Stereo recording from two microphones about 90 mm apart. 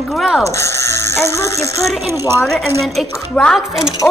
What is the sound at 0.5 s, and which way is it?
Speech, 35° left (ahead or behind).